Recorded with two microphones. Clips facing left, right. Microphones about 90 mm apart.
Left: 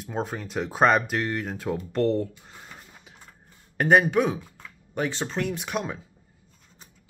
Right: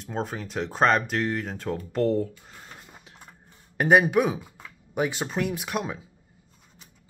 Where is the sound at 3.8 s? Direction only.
5° right (ahead or behind).